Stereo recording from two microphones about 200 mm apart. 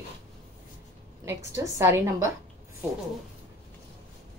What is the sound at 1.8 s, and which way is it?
Speech, 15° right (ahead or behind).